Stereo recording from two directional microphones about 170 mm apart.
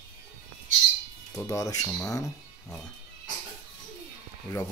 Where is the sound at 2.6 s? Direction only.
5° left (ahead or behind).